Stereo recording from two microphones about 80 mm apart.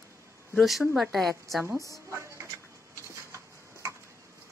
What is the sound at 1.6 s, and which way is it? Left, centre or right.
Speech, right.